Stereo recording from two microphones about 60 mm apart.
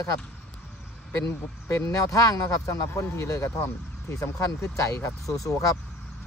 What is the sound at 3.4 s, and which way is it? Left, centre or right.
Speech, left.